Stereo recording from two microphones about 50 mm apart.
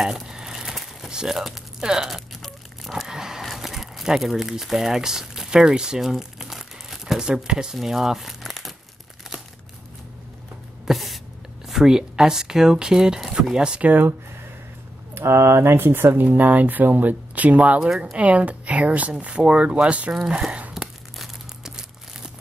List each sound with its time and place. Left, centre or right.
0.0 s a sound: centre
2.0 s crunch: centre
2.9 s a sound: centre
3.4 s crumpling: centre
7.7 s speech: centre
10.9 s a sound: centre
11.6 s speech: centre
13.7 s speech: right
15.1 s speech: right
17.7 s speech: centre
18.1 s speech: right
20.7 s crumpling: centre